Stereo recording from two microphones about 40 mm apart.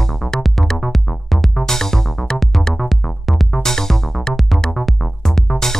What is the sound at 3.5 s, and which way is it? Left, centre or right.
Music, centre.